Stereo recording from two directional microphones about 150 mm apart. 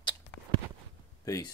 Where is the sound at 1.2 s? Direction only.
25° left (ahead or behind).